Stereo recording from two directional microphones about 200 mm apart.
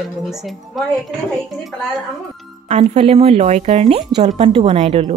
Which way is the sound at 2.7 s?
30° right (ahead or behind).